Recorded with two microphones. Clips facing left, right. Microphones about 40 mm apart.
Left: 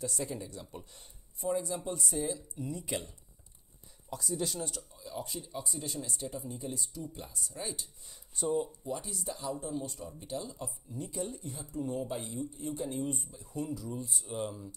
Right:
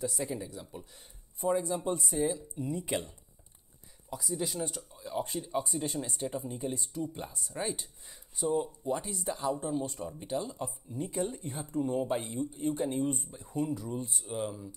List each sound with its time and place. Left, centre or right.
0.0 s speech: centre
1.4 s speech: right
4.1 s speech: centre; by 7.9 s right
8.1 s speech: centre
8.5 s speech: right
8.9 s speech: right
14.2 s speech: centre